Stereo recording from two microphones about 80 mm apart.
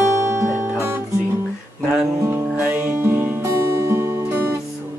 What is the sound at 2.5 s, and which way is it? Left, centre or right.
Music, right.